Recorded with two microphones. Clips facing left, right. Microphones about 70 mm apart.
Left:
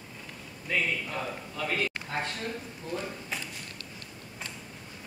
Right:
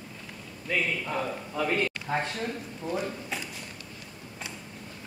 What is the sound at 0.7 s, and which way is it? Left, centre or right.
A man's voice, centre.